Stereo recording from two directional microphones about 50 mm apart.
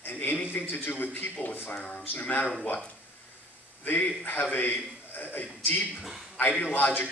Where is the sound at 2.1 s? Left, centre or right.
Left.